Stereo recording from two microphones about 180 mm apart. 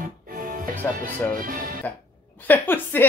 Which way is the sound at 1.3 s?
50° right (ahead or behind).